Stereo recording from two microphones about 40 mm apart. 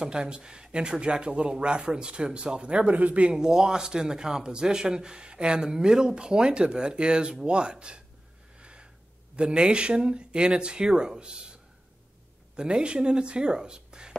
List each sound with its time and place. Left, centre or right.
0.0 s speech: right
3.3 s speech: centre
8.5 s a sound: right
9.4 s speech: right
12.5 s speech: right